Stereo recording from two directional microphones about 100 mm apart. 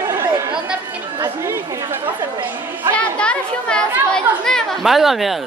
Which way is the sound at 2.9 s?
10° left (ahead or behind).